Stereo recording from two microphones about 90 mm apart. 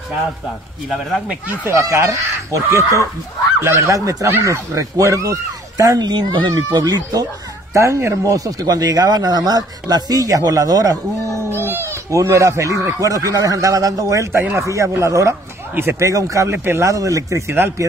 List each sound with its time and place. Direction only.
1.3 s speech: 20° right (ahead or behind)
1.7 s speech: 35° right (ahead or behind); by 6.5 s 60° right (ahead or behind)
6.7 s speech: 45° right (ahead or behind)
7.7 s speech: 35° right (ahead or behind)
11.5 s a sound: 25° right (ahead or behind)
13.0 s speech: 40° right (ahead or behind)